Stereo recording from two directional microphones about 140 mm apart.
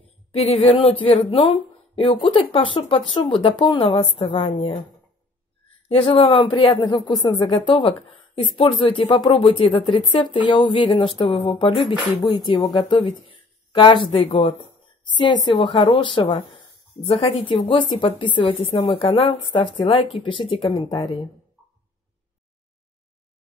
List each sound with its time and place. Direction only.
0.3 s a woman's voice: 45° left (ahead or behind)
5.9 s a woman's voice: 45° left (ahead or behind)
15.1 s a woman's voice: 30° left (ahead or behind)